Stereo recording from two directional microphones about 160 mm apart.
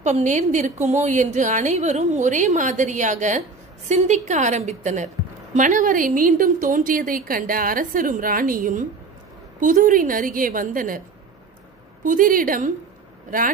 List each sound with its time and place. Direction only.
0.0 s a woman's voice: 50° right (ahead or behind)
12.0 s a woman's voice: 55° right (ahead or behind)